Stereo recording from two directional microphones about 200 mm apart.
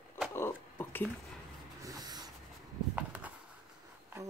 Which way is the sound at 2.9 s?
5° right (ahead or behind).